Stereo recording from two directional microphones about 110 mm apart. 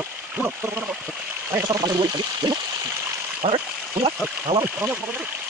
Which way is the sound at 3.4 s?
60° right (ahead or behind).